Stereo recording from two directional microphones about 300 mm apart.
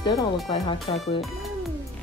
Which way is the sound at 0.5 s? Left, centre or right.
Centre.